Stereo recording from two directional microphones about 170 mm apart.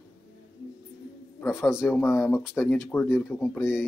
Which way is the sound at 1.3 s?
15° left (ahead or behind).